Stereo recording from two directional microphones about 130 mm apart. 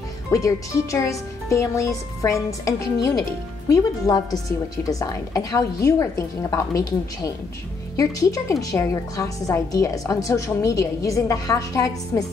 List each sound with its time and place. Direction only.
0.3 s a woman's voice: 25° left (ahead or behind)
7.9 s a woman's voice: 25° left (ahead or behind)